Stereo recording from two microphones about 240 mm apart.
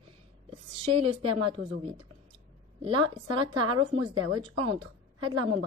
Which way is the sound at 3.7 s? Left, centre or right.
Right.